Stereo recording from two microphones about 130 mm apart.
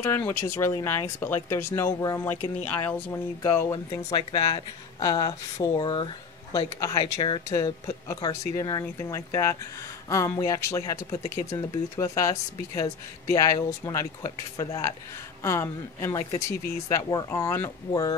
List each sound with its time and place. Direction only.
0.0 s speech: 20° left (ahead or behind)
3.9 s speech: 30° left (ahead or behind)
7.4 s speech: 25° left (ahead or behind)